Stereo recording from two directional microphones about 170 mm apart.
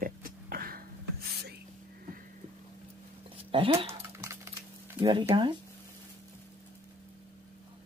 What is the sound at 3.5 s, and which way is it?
Speech, 30° right (ahead or behind).